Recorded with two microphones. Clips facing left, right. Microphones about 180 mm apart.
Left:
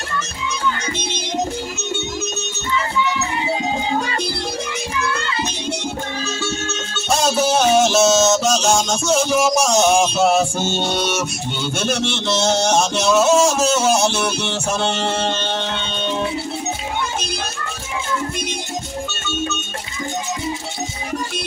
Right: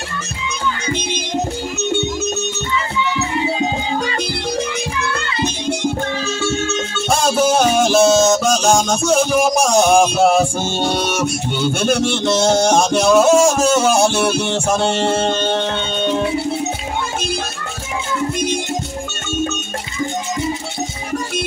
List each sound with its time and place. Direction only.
6.4 s music: 50° right (ahead or behind)